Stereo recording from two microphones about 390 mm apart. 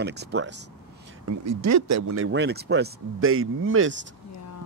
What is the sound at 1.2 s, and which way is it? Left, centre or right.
Speech, right.